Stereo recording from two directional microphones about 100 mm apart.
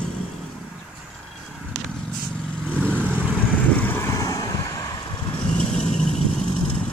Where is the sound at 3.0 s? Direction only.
15° right (ahead or behind).